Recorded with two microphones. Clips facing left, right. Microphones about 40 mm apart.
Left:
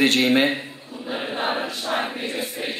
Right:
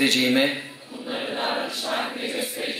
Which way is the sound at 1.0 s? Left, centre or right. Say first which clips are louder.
Left 1 dB; centre.